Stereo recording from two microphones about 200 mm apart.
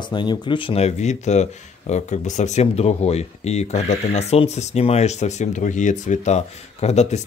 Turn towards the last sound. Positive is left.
turn(degrees=35)  # may be behind; listen again after turning